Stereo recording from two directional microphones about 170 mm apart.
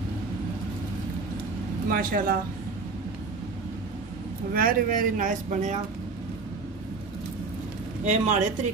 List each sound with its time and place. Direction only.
1.9 s speech: 55° right (ahead or behind)
4.6 s speech: 55° right (ahead or behind)
8.0 s speech: 45° right (ahead or behind)